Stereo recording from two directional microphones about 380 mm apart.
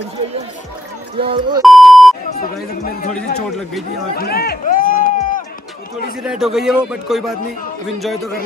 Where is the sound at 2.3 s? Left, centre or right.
Left.